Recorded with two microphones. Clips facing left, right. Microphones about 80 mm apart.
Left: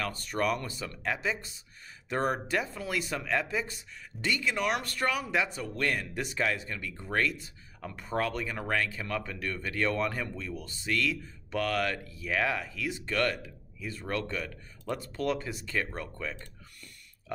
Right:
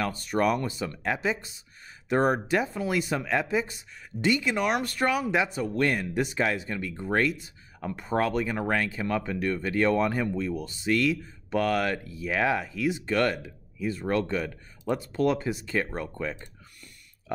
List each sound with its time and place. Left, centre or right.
0.0 s speech: centre